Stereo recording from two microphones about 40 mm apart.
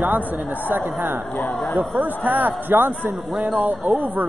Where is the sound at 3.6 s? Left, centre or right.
Right.